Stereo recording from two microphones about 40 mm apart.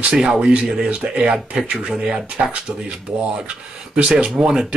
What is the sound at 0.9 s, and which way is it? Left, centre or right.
Speech, right.